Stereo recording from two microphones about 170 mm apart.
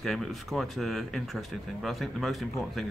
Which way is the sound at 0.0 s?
Centre (ahead or behind).